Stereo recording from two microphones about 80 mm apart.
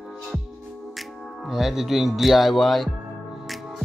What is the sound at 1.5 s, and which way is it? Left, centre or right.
Speech, centre.